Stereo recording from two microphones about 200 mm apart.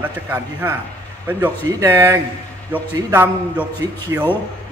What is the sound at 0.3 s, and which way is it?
A man's voice, 10° right (ahead or behind).